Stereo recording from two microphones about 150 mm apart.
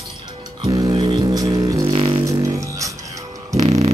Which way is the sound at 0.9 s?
35° right (ahead or behind).